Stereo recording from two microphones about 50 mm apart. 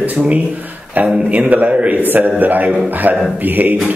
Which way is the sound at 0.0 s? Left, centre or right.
Right.